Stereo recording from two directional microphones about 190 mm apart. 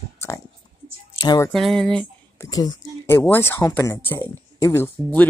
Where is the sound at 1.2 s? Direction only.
20° left (ahead or behind).